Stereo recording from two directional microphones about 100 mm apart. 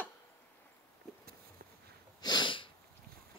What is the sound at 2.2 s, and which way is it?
Sneeze, 50° left (ahead or behind).